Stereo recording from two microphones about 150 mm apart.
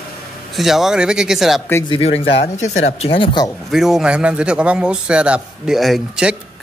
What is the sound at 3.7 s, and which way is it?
A man's voice, 5° right (ahead or behind).